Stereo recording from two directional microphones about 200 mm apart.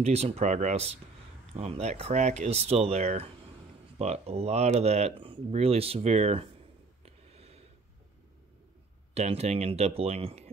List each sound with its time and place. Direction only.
0.0 s speech: 30° right (ahead or behind)
7.3 s a sound: 30° right (ahead or behind)
9.1 s speech: 30° right (ahead or behind)